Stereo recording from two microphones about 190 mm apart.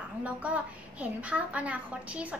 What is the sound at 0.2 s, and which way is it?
A child's voice, 5° right (ahead or behind).